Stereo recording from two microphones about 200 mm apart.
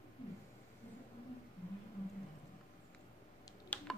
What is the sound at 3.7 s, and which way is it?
Computer keyboard, 10° left (ahead or behind).